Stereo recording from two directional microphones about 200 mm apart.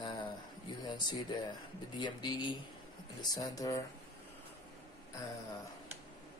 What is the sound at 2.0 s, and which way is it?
Speech, 20° left (ahead or behind).